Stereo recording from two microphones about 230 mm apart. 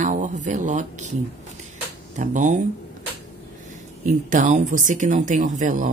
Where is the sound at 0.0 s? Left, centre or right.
Right.